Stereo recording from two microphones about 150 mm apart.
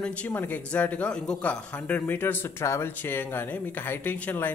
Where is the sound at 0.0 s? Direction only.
10° left (ahead or behind).